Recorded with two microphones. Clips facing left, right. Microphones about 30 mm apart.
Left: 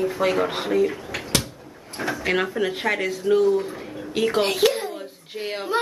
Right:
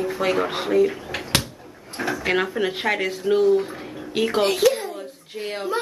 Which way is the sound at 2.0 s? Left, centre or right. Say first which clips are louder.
Right 1 dB; centre.